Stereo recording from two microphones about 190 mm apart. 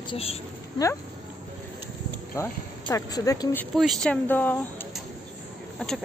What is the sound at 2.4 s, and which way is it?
Speech, 15° left (ahead or behind).